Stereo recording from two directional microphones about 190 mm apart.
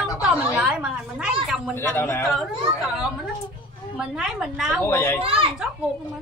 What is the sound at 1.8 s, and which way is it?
Speech, 10° left (ahead or behind).